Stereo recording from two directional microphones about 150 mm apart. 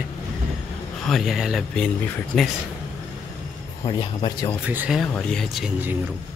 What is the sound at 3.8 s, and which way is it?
Speech, 30° left (ahead or behind).